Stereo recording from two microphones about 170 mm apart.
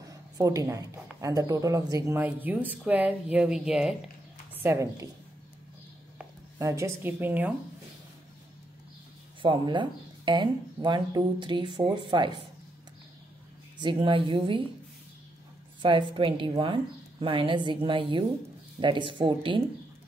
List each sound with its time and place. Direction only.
0.4 s speech: 20° right (ahead or behind); by 3.9 s 5° right (ahead or behind)
4.6 s speech: 15° right (ahead or behind)
6.6 s speech: 15° right (ahead or behind)
9.4 s speech: 30° right (ahead or behind)
13.7 s speech: 30° right (ahead or behind)
15.8 s speech: 30° right (ahead or behind)